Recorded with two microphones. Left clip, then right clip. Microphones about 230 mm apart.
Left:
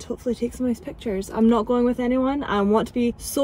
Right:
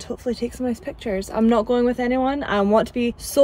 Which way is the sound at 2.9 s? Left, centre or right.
Right.